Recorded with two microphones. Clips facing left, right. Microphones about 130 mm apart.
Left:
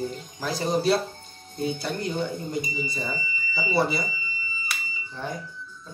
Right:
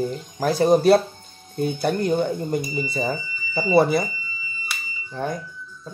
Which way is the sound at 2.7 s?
65° right (ahead or behind).